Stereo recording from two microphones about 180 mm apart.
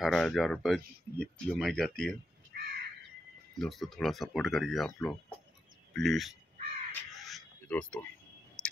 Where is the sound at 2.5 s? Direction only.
60° right (ahead or behind).